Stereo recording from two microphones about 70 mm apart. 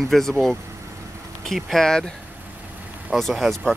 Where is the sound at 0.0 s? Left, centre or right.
Centre.